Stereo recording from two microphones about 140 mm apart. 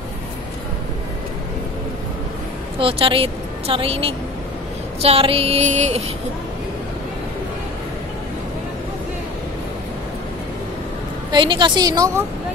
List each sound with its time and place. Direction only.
2.8 s a woman's voice: 40° right (ahead or behind)
5.0 s music: 45° right (ahead or behind)
11.3 s a woman's voice: 35° right (ahead or behind)